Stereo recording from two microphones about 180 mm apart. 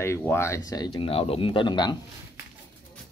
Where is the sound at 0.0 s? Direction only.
15° left (ahead or behind).